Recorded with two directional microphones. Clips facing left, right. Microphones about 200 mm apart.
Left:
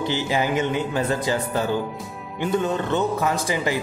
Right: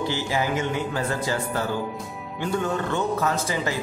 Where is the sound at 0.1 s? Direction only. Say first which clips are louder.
Left 3 dB; 20° left (ahead or behind).